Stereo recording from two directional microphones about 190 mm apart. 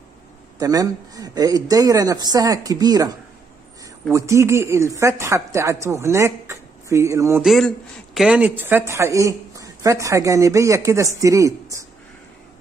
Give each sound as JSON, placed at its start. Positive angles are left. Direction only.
{"t": 0.6, "sound": "a man's voice", "side_deg": -20}
{"t": 7.4, "sound": "speech", "side_deg": 0}